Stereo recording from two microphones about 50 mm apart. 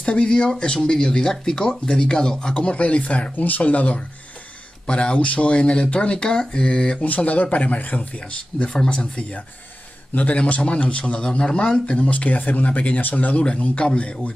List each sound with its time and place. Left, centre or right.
0.0 s a man's voice: centre
7.1 s a man's voice: left
8.6 s speech: centre
10.1 s a man's voice: left